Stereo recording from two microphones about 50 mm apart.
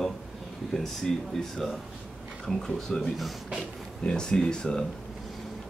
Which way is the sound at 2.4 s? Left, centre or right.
Centre.